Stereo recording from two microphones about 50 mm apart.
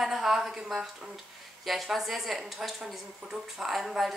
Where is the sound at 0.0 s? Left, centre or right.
Centre.